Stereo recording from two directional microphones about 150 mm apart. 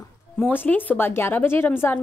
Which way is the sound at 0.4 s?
10° left (ahead or behind).